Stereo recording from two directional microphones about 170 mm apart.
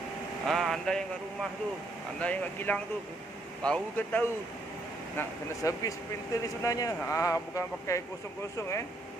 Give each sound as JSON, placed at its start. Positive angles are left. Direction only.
{"t": 0.5, "sound": "speech", "side_deg": 0}
{"t": 2.1, "sound": "speech", "side_deg": 10}
{"t": 5.1, "sound": "speech", "side_deg": 20}